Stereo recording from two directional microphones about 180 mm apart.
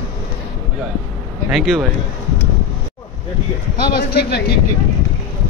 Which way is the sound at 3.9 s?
60° left (ahead or behind).